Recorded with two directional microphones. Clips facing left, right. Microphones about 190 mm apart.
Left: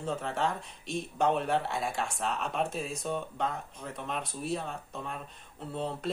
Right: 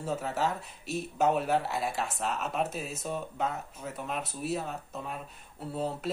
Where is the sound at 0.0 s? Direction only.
5° right (ahead or behind).